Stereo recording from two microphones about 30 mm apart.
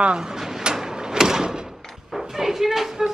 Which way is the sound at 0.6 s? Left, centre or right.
Right.